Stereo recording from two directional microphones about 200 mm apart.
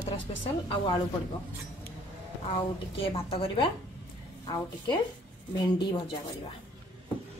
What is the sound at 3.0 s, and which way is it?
Speech, 25° left (ahead or behind).